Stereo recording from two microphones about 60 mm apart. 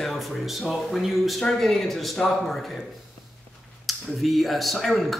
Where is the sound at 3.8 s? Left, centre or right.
Centre.